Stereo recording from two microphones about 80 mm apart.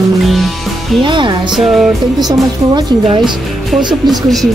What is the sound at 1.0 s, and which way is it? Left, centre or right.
Speech, right.